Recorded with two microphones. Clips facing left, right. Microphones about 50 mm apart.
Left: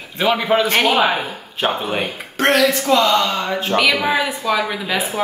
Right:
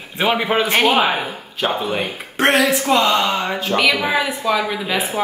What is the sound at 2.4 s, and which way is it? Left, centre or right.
Speech, centre.